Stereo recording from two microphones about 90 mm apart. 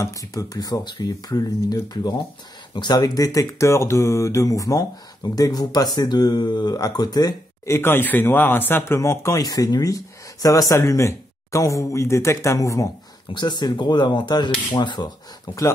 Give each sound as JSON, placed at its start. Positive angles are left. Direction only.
{"t": 0.0, "sound": "speech", "side_deg": 40}
{"t": 3.0, "sound": "speech", "side_deg": 40}
{"t": 7.6, "sound": "speech", "side_deg": 30}
{"t": 13.3, "sound": "speech", "side_deg": 55}